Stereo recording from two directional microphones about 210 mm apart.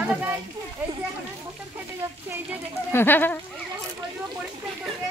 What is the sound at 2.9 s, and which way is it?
Speech, 10° left (ahead or behind).